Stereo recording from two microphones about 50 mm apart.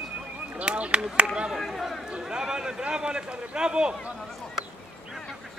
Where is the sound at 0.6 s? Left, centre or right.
Right.